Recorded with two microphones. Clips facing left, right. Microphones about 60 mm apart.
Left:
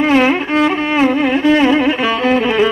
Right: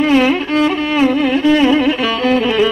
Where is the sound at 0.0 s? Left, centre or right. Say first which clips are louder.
Even; left.